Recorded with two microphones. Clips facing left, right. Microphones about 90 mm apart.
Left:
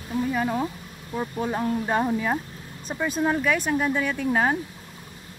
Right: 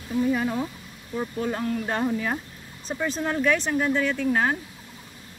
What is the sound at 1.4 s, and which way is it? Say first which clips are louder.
Speech: left 2 dB; 25° left (ahead or behind).